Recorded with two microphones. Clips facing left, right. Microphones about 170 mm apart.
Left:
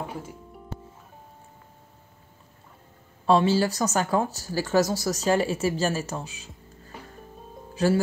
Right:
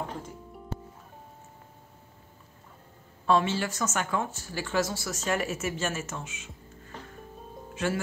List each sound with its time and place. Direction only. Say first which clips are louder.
0.1 s music: left 2 dB; 5° left (ahead or behind)
3.3 s speech: left 5 dB; 35° left (ahead or behind)
6.9 s music: left 1 dB; 10° left (ahead or behind)
7.7 s music: left 7 dB; 35° left (ahead or behind)